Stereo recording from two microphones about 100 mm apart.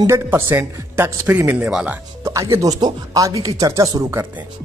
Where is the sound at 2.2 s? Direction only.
35° right (ahead or behind).